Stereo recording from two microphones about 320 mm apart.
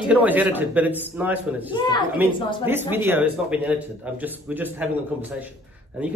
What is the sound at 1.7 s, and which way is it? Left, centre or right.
Speech, centre.